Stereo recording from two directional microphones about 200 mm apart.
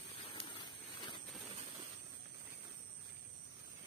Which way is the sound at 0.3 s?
25° left (ahead or behind).